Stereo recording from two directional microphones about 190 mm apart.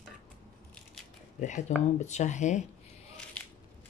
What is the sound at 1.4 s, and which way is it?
Speech, 40° left (ahead or behind).